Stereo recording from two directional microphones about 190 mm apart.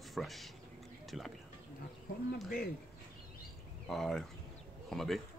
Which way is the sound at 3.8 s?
Centre (ahead or behind).